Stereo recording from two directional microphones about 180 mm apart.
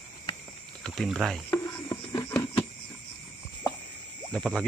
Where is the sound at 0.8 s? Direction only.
Centre (ahead or behind).